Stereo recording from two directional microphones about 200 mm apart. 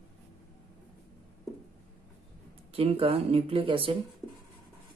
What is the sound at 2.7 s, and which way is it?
Speech, 30° right (ahead or behind).